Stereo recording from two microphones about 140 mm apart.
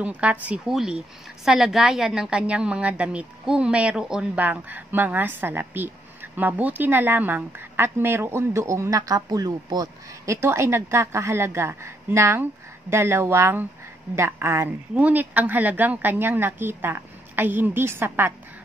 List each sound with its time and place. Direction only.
0.0 s a woman's voice: 10° right (ahead or behind)